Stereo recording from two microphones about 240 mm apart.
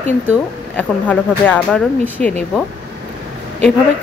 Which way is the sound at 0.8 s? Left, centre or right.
Centre.